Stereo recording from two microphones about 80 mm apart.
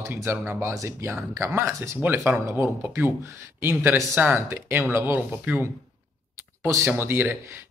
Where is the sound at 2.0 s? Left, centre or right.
Right.